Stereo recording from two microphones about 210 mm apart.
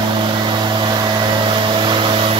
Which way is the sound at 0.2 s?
20° right (ahead or behind).